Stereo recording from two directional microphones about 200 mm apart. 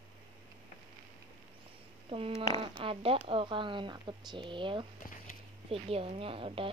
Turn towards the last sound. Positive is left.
turn(degrees=-25)  # may be behind; listen again after turning